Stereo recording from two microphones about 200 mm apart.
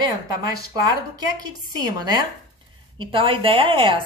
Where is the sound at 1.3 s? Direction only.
20° right (ahead or behind).